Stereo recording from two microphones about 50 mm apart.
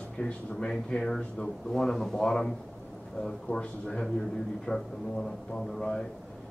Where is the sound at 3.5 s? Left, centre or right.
Centre.